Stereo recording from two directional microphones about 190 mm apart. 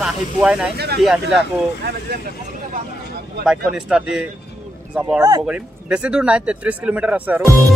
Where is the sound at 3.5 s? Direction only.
5° right (ahead or behind).